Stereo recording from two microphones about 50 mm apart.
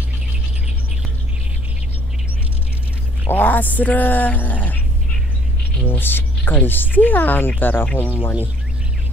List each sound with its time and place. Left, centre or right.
3.3 s speech: left
5.9 s speech: left